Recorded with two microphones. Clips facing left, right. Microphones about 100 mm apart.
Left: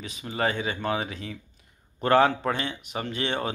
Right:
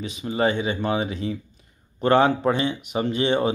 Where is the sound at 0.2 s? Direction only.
15° right (ahead or behind).